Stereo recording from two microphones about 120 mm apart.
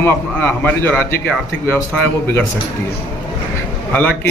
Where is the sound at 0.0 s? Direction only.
15° left (ahead or behind).